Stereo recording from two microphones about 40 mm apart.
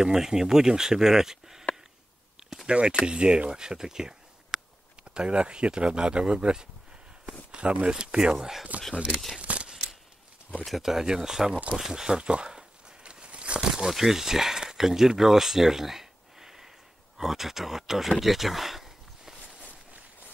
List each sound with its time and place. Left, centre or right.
0.0 s speech: centre
2.7 s speech: right
5.0 s speech: right
7.8 s speech: right
8.4 s speech: centre
8.9 s speech: right
9.4 s a sound: right
10.8 s speech: centre
11.7 s a sound: centre
13.6 s speech: centre
18.2 s a sound: centre